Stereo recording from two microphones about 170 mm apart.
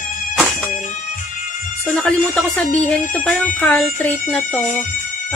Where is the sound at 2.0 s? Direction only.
10° left (ahead or behind).